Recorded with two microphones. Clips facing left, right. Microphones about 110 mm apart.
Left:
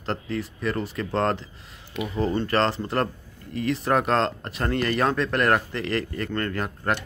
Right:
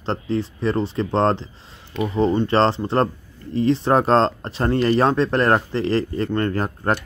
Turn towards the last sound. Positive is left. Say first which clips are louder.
# right 5 dB
turn(degrees=-35)  # may be behind; listen again after turning